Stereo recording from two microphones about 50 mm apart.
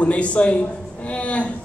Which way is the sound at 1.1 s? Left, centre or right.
Left.